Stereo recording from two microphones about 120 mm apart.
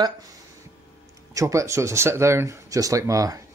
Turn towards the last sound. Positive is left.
turn(degrees=-25)  # may be behind; listen again after turning